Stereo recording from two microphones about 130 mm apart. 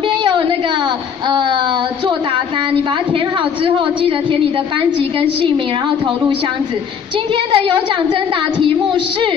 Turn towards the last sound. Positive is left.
turn(degrees=-40)  # may be behind; listen again after turning